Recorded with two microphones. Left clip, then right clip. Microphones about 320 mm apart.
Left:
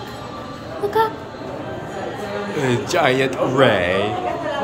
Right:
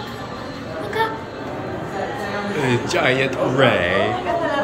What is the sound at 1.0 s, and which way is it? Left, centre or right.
Speech, left.